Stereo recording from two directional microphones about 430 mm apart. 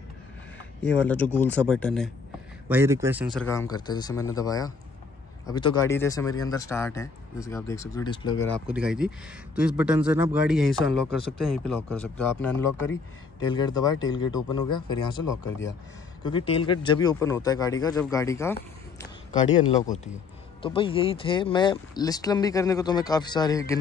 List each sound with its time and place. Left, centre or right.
0.8 s a man's voice: centre
8.6 s a man's voice: centre
16.3 s speech: centre